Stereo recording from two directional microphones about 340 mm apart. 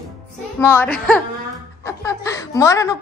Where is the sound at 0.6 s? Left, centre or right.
Centre.